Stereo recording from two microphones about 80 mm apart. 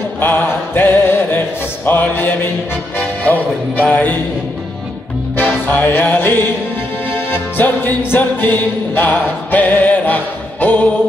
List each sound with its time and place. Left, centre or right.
0.2 s music: left
5.3 s music: left